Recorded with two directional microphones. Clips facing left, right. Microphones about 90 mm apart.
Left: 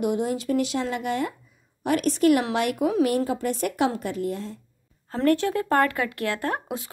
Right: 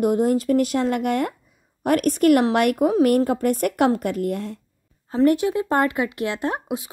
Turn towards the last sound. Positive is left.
turn(degrees=-20)  # may be behind; listen again after turning